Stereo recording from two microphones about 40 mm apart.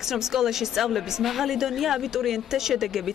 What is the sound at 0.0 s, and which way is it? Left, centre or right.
Speech, centre.